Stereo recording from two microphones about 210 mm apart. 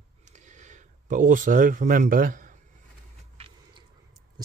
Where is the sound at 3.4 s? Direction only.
30° right (ahead or behind).